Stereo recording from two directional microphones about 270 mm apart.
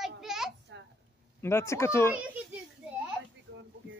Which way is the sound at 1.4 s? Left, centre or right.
Centre.